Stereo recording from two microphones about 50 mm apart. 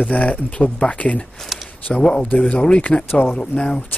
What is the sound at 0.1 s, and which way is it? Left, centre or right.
Speech, left.